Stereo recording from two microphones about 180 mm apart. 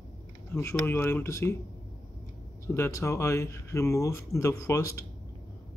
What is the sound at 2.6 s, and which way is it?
Speech, 15° left (ahead or behind).